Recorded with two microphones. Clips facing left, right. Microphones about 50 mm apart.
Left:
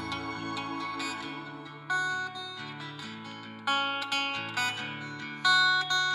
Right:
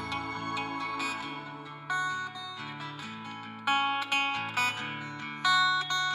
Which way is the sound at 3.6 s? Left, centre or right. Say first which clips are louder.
Right 2 dB; right.